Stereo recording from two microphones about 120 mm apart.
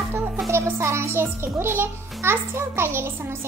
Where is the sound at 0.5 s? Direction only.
25° right (ahead or behind).